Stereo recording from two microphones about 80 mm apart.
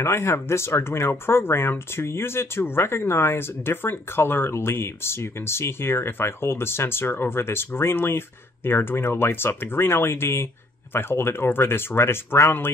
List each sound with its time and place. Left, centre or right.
0.0 s speech: left